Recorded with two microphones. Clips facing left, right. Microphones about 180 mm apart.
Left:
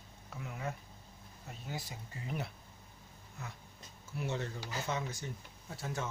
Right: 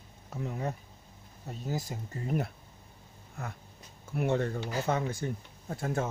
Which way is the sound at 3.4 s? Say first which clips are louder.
Right 7 dB; 55° right (ahead or behind).